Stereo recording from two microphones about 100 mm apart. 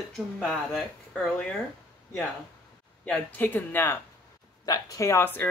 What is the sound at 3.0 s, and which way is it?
Speech, 15° left (ahead or behind).